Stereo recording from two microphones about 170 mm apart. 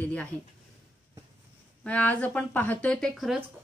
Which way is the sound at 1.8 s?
5° left (ahead or behind).